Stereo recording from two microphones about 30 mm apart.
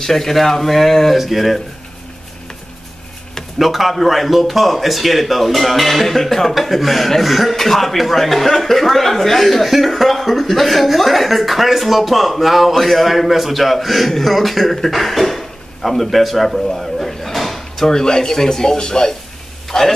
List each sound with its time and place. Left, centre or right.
0.0 s speech: centre
1.1 s speech: centre
3.5 s speech: centre
17.8 s speech: left